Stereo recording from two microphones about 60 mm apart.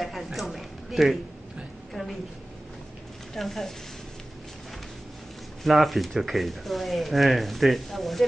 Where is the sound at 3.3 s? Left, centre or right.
Centre.